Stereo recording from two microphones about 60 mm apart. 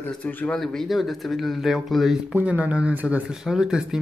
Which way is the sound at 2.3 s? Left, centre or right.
Right.